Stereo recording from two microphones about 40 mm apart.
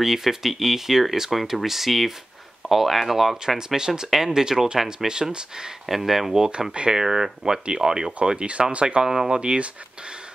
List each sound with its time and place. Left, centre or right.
0.0 s speech: centre
3.5 s speech: centre
5.9 s speech: centre
6.7 s speech: right
7.0 s speech: centre